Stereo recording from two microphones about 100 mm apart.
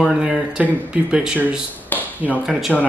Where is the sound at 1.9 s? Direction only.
20° left (ahead or behind).